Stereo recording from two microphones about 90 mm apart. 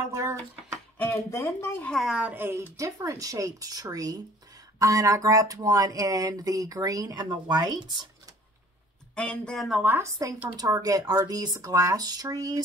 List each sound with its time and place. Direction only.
0.1 s speech: 35° right (ahead or behind)
0.9 s a sound: 20° left (ahead or behind)
1.3 s speech: 25° left (ahead or behind)
1.9 s a woman's voice: centre (ahead or behind)
2.1 s speech: 20° right (ahead or behind)
2.8 s speech: 35° right (ahead or behind)
9.1 s speech: 10° left (ahead or behind)
9.6 s a woman's voice: 5° right (ahead or behind)
9.8 s speech: 30° right (ahead or behind)
10.5 s speech: 45° right (ahead or behind)